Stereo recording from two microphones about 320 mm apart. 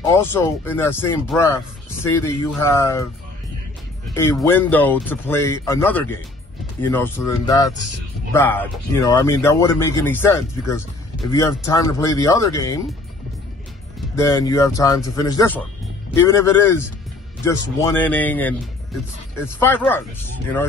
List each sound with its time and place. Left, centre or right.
0.0 s speech: centre
2.0 s speech: centre
4.1 s speech: centre
14.1 s speech: centre